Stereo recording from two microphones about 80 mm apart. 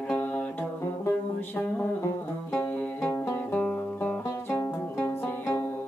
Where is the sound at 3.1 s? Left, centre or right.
Left.